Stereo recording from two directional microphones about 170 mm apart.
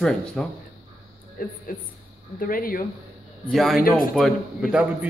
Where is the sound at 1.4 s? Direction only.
55° left (ahead or behind).